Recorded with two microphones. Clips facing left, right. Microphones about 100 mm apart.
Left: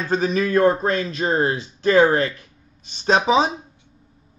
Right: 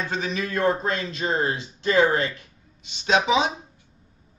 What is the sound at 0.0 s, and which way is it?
A man's voice, 40° left (ahead or behind).